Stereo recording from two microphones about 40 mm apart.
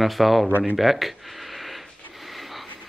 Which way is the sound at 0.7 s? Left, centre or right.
Centre.